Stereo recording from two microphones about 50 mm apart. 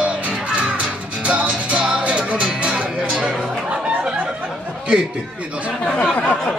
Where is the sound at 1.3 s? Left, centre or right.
Right.